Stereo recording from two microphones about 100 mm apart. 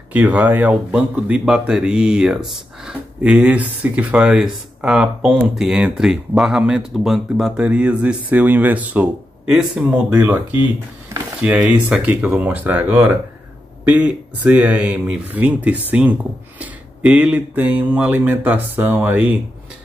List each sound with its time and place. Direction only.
0.1 s speech: 15° right (ahead or behind)
11.6 s speech: 5° right (ahead or behind)
12.1 s speech: 15° right (ahead or behind)